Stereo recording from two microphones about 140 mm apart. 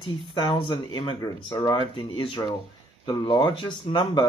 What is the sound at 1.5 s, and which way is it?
Speech, 25° left (ahead or behind).